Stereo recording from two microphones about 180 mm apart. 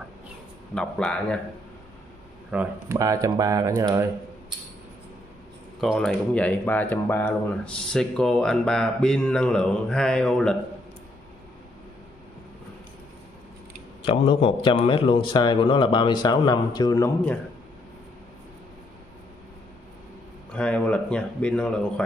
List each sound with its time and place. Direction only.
0.7 s speech: 5° left (ahead or behind)
2.5 s speech: 10° right (ahead or behind)
3.0 s speech: 20° right (ahead or behind)
5.8 s speech: centre (ahead or behind)
14.0 s speech: 30° left (ahead or behind)
20.5 s speech: 5° left (ahead or behind)